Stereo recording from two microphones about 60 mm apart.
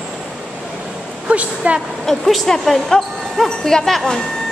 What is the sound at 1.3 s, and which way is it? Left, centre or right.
Speech, right.